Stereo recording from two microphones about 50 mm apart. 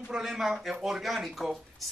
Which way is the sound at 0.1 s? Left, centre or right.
Centre.